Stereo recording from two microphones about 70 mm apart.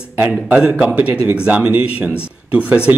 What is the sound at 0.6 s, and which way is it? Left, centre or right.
Speech, centre.